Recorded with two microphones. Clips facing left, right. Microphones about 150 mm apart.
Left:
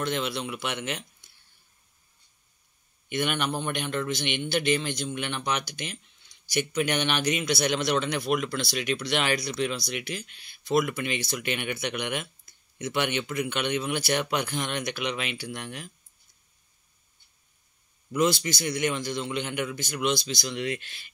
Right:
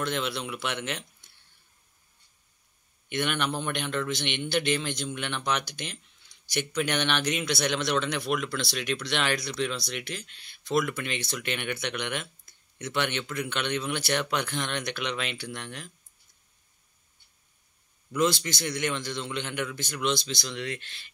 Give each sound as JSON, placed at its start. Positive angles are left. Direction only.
{"t": 0.0, "sound": "a man's voice", "side_deg": 0}
{"t": 3.1, "sound": "a man's voice", "side_deg": 5}
{"t": 18.1, "sound": "a man's voice", "side_deg": 5}